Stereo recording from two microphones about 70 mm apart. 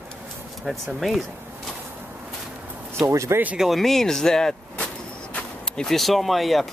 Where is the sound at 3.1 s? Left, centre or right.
Right.